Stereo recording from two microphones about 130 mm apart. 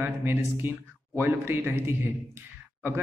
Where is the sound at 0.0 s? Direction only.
15° right (ahead or behind).